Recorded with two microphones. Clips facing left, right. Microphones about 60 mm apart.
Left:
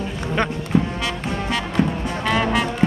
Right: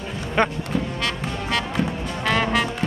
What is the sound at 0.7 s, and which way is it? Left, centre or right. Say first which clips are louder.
Music: left 6 dB; left.